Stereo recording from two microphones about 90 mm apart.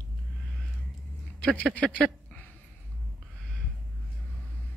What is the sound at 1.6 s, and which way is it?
Speech, 10° left (ahead or behind).